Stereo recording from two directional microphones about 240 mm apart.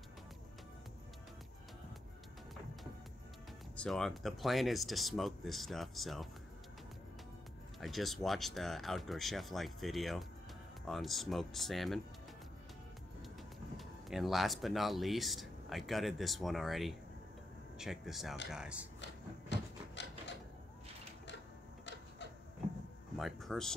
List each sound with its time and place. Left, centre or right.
3.7 s speech: centre
7.8 s speech: centre
13.7 s speech: centre
20.0 s a sound: left
23.1 s speech: centre